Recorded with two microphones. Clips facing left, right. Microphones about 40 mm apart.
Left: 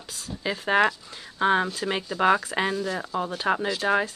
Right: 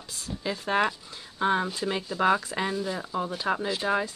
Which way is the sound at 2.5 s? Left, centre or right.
Left.